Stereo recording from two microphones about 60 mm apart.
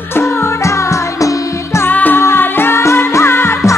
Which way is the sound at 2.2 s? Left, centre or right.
Left.